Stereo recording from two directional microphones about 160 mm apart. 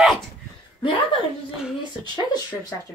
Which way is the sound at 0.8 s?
30° left (ahead or behind).